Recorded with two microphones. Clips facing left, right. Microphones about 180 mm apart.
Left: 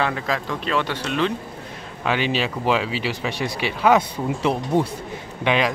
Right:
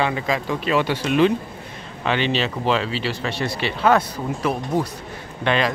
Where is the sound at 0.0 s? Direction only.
5° right (ahead or behind).